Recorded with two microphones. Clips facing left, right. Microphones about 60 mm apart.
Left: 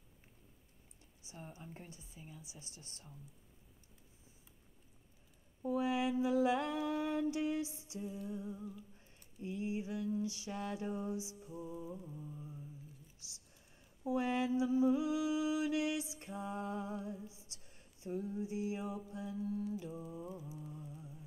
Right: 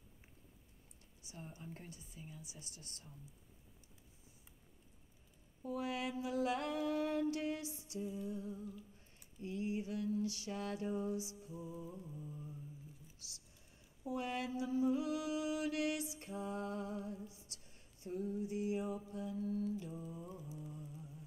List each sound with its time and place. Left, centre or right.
1.2 s mantra: left
5.6 s mantra: left
8.0 s music: centre
8.3 s mantra: centre
11.5 s mantra: centre
13.2 s a sound: left
14.0 s mantra: left
19.6 s mantra: centre
19.9 s music: centre